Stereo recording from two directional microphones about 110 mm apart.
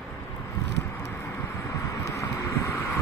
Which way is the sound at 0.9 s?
20° left (ahead or behind).